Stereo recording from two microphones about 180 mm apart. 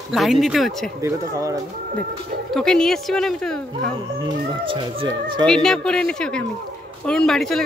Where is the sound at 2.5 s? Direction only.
5° left (ahead or behind).